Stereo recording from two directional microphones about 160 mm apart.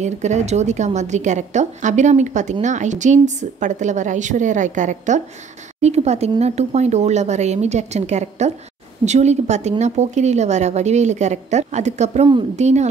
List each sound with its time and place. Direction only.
0.0 s a woman's voice: 45° right (ahead or behind)